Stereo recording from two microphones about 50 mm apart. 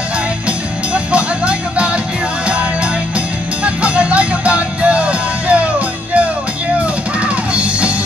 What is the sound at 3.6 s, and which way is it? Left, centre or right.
Music, right.